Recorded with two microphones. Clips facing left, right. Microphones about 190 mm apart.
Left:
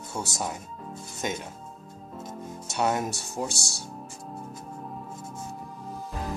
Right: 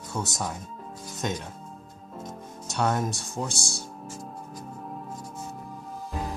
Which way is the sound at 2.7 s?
5° left (ahead or behind).